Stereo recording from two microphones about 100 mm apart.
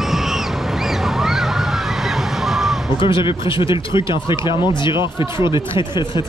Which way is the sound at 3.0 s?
55° left (ahead or behind).